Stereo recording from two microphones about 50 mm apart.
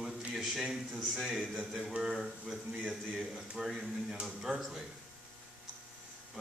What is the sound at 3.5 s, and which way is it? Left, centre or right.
Speech, centre.